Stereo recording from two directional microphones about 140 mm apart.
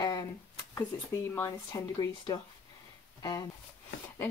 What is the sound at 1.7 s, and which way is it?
Speech, 25° left (ahead or behind).